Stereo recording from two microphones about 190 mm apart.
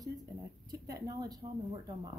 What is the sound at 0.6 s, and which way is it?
Speech, 20° right (ahead or behind).